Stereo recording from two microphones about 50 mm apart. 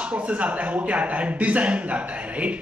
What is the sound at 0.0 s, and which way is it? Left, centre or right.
Speech, right.